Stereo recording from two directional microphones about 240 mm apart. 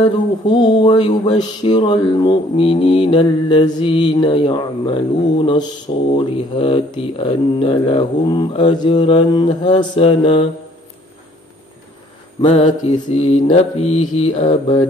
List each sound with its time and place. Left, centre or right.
0.0 s mantra: centre
12.4 s mantra: left